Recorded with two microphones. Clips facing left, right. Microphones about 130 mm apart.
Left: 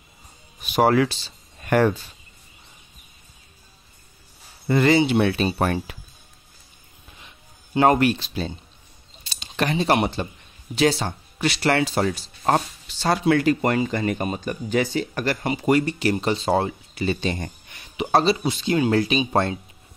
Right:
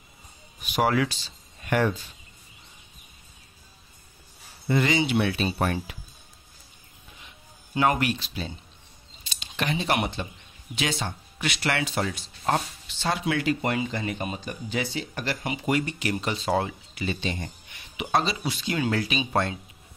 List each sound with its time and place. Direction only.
0.6 s speech: 35° left (ahead or behind)
1.6 s speech: 45° left (ahead or behind)
4.6 s speech: 45° left (ahead or behind)
7.7 s speech: 40° left (ahead or behind)
18.1 s speech: 30° left (ahead or behind)